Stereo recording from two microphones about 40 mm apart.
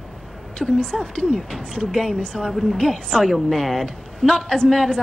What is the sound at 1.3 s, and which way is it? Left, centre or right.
Speech, centre.